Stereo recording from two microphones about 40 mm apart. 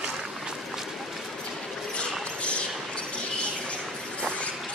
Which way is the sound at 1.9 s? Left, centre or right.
Left.